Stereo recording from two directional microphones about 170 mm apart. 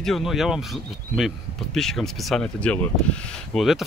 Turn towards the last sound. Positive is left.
turn(degrees=0)  # may be behind; listen again after turning